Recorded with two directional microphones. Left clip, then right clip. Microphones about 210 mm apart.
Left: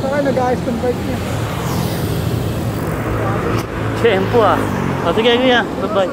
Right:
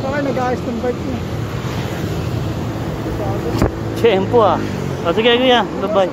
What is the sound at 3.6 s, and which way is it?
Speech, 20° right (ahead or behind).